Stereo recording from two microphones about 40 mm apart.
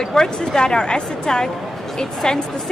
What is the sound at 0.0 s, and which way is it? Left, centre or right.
A woman's voice, centre.